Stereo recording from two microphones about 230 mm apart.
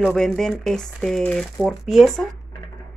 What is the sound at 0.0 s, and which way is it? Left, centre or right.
Speech, centre.